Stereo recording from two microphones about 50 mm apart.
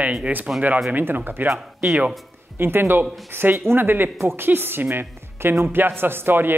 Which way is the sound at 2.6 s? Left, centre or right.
Right.